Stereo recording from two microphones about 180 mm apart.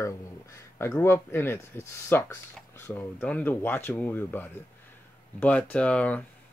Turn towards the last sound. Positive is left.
turn(degrees=5)  # may be behind; listen again after turning